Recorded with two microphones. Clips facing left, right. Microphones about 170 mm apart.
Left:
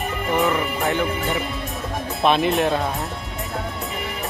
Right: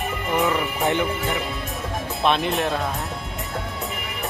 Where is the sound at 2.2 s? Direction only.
Centre (ahead or behind).